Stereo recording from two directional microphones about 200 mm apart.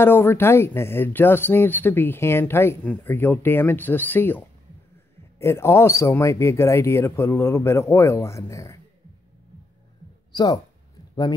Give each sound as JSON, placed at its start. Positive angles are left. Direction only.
{"t": 0.0, "sound": "speech", "side_deg": 10}
{"t": 10.3, "sound": "speech", "side_deg": 20}